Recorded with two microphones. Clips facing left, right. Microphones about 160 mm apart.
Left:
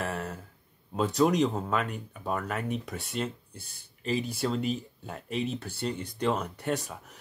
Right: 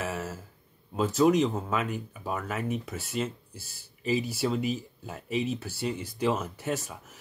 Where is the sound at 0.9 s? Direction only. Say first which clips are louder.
Right 2 dB; centre (ahead or behind).